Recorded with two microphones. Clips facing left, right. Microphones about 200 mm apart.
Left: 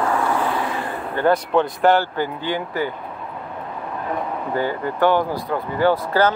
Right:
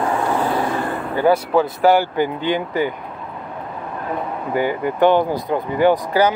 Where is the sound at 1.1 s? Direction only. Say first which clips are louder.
Right 2 dB; 10° right (ahead or behind).